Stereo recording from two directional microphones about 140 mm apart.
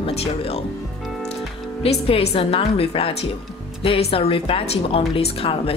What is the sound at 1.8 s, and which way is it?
A woman's voice, 45° left (ahead or behind).